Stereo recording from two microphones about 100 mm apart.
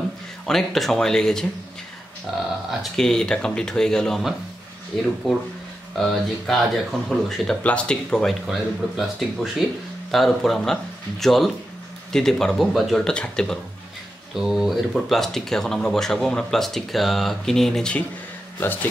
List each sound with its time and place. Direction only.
0.5 s speech: 5° left (ahead or behind)
2.7 s speech: centre (ahead or behind)
14.3 s speech: 5° right (ahead or behind)
18.6 s speech: 20° left (ahead or behind)